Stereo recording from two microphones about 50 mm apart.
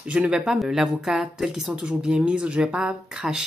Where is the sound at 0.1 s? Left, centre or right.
Right.